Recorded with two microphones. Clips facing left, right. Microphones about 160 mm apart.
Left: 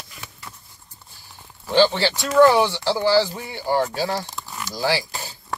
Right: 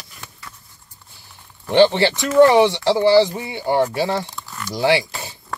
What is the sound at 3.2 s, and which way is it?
Speech, 20° right (ahead or behind).